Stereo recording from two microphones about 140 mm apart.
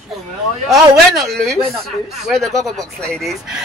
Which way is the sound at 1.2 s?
Centre (ahead or behind).